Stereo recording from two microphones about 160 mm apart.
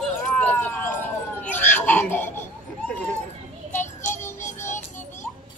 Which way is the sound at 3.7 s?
15° left (ahead or behind).